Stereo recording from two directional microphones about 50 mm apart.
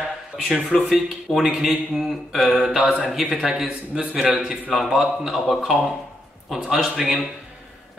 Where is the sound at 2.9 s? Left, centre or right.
Left.